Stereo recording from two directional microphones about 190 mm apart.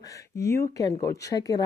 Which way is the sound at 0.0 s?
15° left (ahead or behind).